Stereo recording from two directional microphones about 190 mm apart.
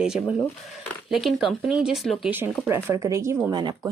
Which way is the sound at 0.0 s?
5° right (ahead or behind).